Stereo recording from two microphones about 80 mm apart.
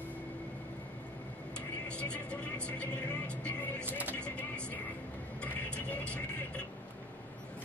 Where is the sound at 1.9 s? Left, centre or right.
Centre.